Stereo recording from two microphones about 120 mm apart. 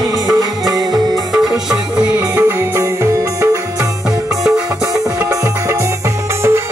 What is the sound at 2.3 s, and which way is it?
Music, 20° right (ahead or behind).